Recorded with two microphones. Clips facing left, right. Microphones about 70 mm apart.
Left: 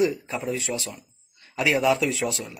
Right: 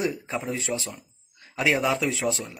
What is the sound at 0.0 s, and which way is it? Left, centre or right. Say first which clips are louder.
A man's voice: left 4 dB; right.